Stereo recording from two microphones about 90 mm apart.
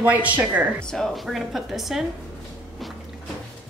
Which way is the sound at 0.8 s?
Centre (ahead or behind).